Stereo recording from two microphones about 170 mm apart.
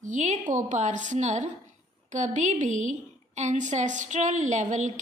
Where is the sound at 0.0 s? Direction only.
45° right (ahead or behind).